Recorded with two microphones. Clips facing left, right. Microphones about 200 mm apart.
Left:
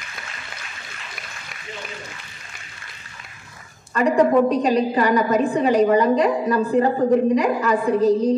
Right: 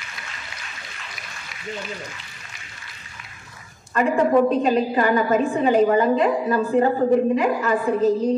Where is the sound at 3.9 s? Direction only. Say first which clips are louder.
Left 1 dB; 40° left (ahead or behind).